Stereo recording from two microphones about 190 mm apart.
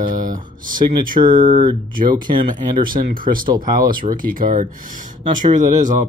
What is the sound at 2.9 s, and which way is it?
Speech, 50° right (ahead or behind).